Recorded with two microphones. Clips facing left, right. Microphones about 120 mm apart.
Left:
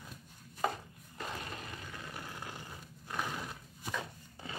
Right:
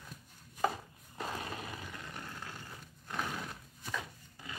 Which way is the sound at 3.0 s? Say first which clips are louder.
Even; 5° left (ahead or behind).